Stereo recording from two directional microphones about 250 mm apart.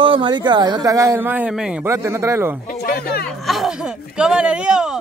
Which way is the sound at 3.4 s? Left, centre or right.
Centre.